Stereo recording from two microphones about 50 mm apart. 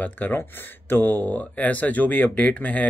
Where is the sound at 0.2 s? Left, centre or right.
Left.